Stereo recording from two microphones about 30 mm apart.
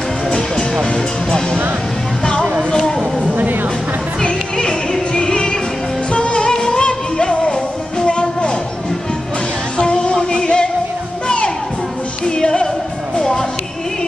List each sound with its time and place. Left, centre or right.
4.2 s music: left
9.8 s music: left